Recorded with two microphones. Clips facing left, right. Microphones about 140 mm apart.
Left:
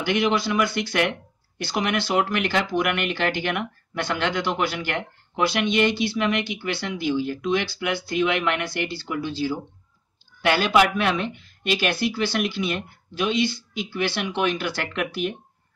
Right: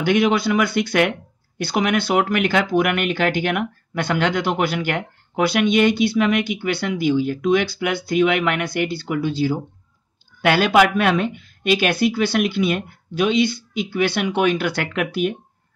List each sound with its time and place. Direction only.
0.0 s speech: 50° right (ahead or behind)